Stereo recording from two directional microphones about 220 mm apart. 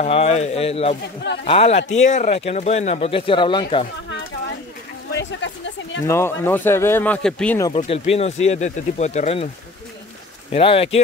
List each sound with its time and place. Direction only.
0.0 s speech: 30° left (ahead or behind)
6.0 s speech: 10° left (ahead or behind)
7.7 s speech: 25° left (ahead or behind)
10.5 s speech: 25° left (ahead or behind)